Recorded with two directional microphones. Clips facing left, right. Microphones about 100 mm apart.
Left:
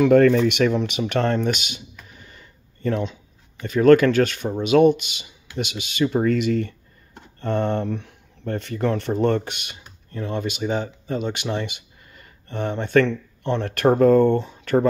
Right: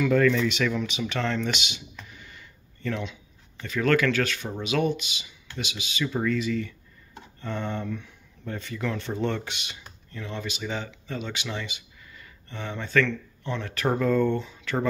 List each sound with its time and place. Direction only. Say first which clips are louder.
0.0 s speech: left 7 dB; 55° left (ahead or behind)